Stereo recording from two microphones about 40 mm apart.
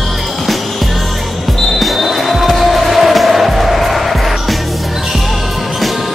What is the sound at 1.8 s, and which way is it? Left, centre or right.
Music, centre.